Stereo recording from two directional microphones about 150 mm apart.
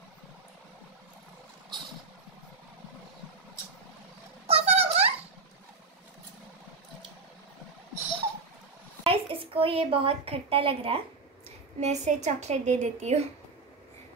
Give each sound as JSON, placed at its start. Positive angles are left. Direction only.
{"t": 4.5, "sound": "a sound", "side_deg": -45}
{"t": 9.0, "sound": "a woman's voice", "side_deg": -40}
{"t": 11.8, "sound": "a woman's voice", "side_deg": -50}